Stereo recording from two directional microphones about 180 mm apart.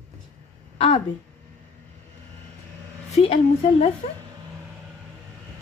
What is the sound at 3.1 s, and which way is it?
Speech, 35° left (ahead or behind).